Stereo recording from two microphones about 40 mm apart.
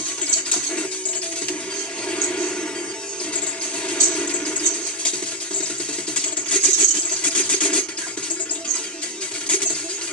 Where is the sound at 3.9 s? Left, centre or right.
Left.